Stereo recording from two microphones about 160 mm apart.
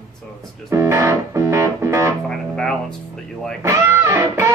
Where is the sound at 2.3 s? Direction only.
5° left (ahead or behind).